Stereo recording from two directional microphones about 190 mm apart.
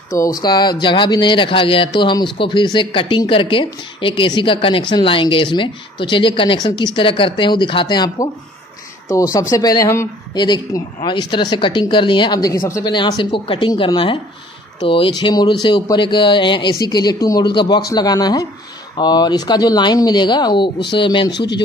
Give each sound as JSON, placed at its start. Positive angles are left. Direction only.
{"t": 0.1, "sound": "speech", "side_deg": 20}
{"t": 21.3, "sound": "a man's voice", "side_deg": 65}